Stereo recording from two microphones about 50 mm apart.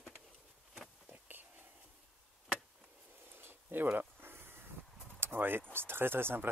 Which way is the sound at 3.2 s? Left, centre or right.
Right.